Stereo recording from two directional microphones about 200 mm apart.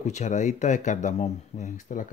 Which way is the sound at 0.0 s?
35° left (ahead or behind).